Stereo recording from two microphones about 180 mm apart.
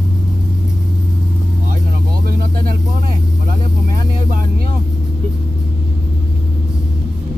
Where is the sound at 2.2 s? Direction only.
55° right (ahead or behind).